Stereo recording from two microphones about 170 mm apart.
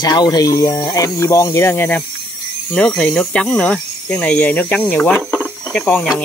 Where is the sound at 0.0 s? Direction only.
25° left (ahead or behind).